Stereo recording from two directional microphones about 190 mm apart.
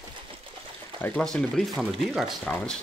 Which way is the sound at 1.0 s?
5° left (ahead or behind).